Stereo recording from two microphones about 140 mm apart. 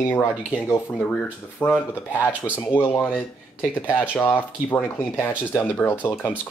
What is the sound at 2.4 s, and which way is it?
Speech, 10° right (ahead or behind).